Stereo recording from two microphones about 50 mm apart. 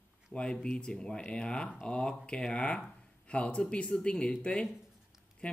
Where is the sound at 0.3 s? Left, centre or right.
Centre.